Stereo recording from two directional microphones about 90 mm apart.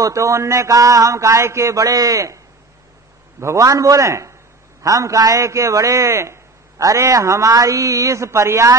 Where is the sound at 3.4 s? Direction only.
35° right (ahead or behind).